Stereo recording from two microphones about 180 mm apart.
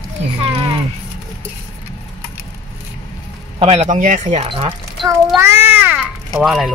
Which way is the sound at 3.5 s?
30° right (ahead or behind).